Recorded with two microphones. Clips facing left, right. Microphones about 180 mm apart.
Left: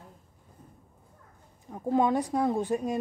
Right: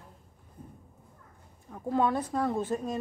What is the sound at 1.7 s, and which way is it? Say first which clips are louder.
Speech: left 3 dB; 20° left (ahead or behind).